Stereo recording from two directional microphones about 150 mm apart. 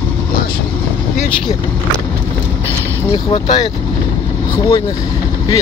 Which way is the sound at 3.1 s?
40° left (ahead or behind).